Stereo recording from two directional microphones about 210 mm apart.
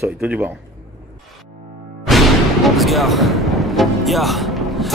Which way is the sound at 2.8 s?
Centre (ahead or behind).